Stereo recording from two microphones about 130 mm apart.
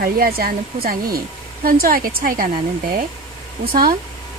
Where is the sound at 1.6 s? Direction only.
90° right.